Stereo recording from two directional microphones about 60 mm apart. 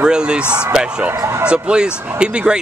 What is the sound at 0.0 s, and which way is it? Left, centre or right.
Speech, centre.